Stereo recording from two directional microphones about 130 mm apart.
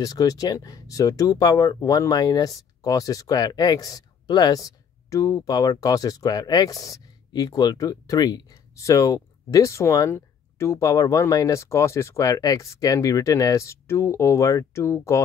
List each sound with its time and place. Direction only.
0.0 s speech: 30° left (ahead or behind)